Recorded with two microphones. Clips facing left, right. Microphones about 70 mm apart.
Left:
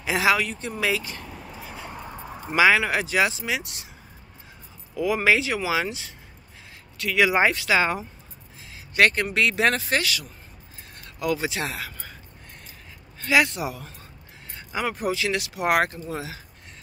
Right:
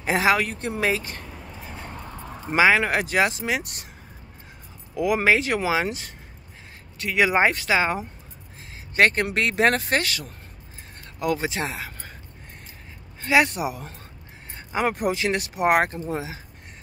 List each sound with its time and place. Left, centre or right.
0.0 s speech: right
1.2 s a sound: centre
1.9 s a sound: centre
2.5 s speech: right
4.9 s speech: right
5.2 s speech: right
7.0 s speech: right
13.2 s speech: right
14.5 s vehicle: right
15.0 s speech: right